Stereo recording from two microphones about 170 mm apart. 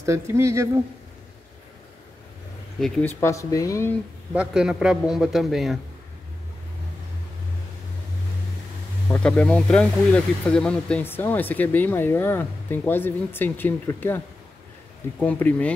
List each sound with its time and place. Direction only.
0.0 s speech: 15° right (ahead or behind)
3.2 s speech: 20° left (ahead or behind)
4.3 s a man's voice: 5° right (ahead or behind)
9.1 s speech: 10° left (ahead or behind)